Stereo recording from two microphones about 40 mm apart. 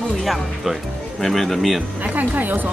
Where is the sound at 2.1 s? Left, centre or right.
Right.